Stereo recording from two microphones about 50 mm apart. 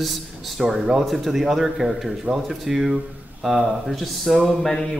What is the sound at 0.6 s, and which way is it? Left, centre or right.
Speech, centre.